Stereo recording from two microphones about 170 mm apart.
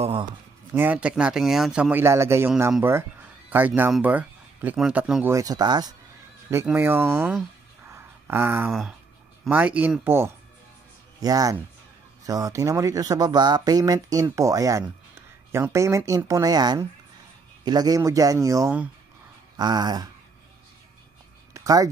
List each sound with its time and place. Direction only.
0.0 s speech: 30° right (ahead or behind)
0.7 s speech: 10° right (ahead or behind)
5.3 s speech: 20° right (ahead or behind)
6.5 s speech: 10° right (ahead or behind)
19.5 s speech: 25° right (ahead or behind)
21.5 s a sound: 20° right (ahead or behind)